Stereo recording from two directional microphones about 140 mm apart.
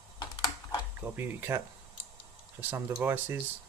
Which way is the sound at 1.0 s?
15° right (ahead or behind).